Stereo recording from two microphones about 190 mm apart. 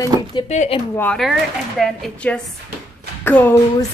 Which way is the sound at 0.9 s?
5° left (ahead or behind).